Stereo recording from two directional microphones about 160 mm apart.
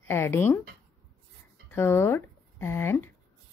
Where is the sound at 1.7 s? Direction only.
15° left (ahead or behind).